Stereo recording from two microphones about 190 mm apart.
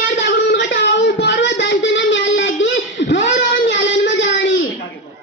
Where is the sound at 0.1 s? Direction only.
55° left (ahead or behind); by 3.2 s 70° left (ahead or behind).